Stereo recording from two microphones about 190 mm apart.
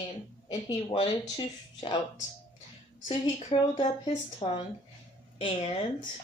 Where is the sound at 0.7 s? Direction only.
20° left (ahead or behind).